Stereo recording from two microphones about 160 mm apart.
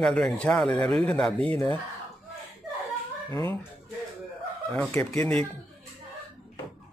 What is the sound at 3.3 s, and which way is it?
Speech, 20° left (ahead or behind).